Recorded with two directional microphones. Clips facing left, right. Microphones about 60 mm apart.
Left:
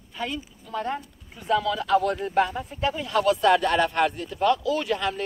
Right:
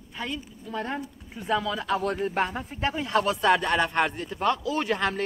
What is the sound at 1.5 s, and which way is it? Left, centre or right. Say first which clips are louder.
A man's voice: left 4 dB; right.